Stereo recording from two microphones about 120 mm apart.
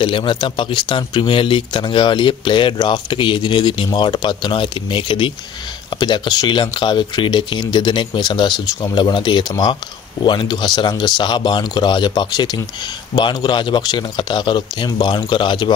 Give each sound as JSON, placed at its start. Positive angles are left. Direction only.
{"t": 0.0, "sound": "speech", "side_deg": 45}